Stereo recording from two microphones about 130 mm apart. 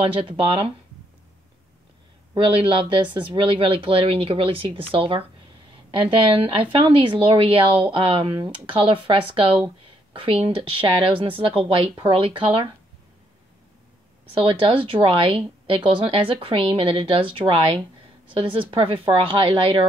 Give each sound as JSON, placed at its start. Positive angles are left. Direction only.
{"t": 0.0, "sound": "speech", "side_deg": -45}
{"t": 2.4, "sound": "speech", "side_deg": -40}
{"t": 14.3, "sound": "speech", "side_deg": -45}